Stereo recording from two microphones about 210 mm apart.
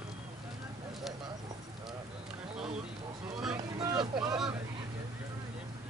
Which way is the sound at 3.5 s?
15° right (ahead or behind).